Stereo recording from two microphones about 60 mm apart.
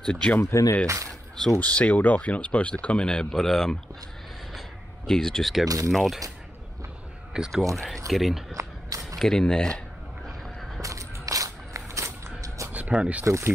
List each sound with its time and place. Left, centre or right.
0.0 s speech: centre
0.4 s speech: left
1.6 s speech: left; by 3.7 s centre
4.6 s a sound: centre
5.4 s speech: centre
7.3 s speech: centre
7.7 s speech: centre
8.5 s a sound: right
9.2 s speech: centre
10.8 s a sound: right
12.9 s speech: centre
13.2 s speech: right